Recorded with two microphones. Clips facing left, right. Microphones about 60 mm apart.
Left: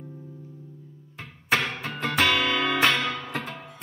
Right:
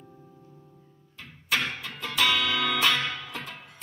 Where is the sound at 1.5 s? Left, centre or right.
Left.